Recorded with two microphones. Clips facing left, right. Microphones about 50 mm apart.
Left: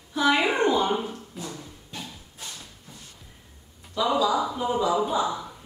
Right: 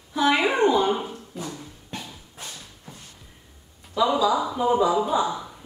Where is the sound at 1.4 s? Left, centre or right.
Right.